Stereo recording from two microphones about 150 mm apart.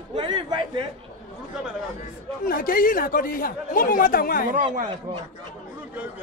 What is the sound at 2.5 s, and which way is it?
Speech, 70° left (ahead or behind).